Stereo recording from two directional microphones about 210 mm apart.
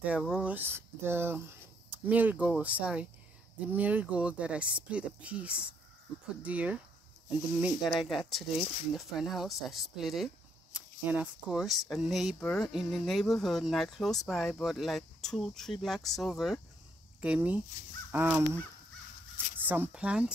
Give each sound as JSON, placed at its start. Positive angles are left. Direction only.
{"t": 0.0, "sound": "speech", "side_deg": -5}
{"t": 19.6, "sound": "speech", "side_deg": -10}